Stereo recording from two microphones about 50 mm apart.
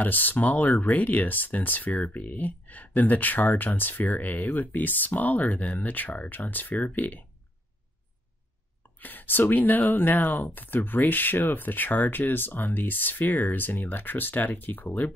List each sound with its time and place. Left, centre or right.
0.0 s speech: left
8.9 s speech: left